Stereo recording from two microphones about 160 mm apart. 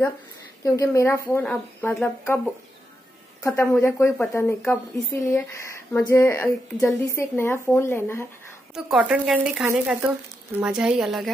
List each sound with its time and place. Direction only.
0.7 s speech: 20° left (ahead or behind)
3.4 s speech: 15° left (ahead or behind)
8.7 s a woman's voice: 5° right (ahead or behind)